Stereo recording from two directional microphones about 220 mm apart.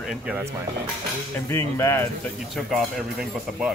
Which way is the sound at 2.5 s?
Centre (ahead or behind).